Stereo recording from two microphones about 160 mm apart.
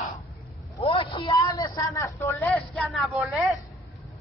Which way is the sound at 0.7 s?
35° left (ahead or behind).